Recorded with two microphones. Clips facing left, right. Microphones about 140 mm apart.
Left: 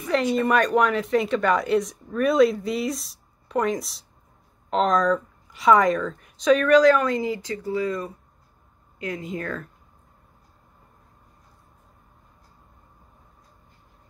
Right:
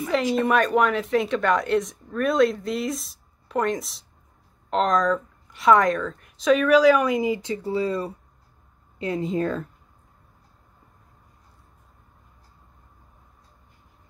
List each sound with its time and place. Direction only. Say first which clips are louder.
0.1 s speech: left 1 dB; centre (ahead or behind); by 9.7 s 25° right (ahead or behind)